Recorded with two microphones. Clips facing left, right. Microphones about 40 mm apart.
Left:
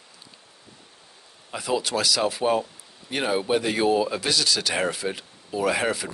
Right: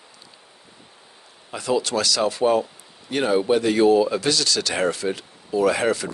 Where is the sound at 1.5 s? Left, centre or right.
Centre.